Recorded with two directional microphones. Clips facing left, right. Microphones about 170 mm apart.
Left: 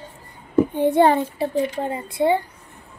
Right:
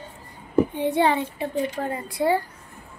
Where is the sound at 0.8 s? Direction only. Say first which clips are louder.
Left 5 dB; 50° left (ahead or behind).